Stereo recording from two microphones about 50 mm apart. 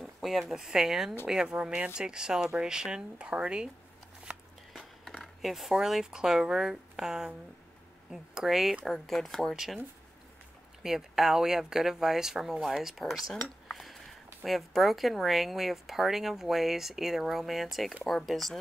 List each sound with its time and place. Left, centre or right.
0.0 s speech: centre
1.2 s speech: centre
4.7 s speech: centre
10.8 s speech: centre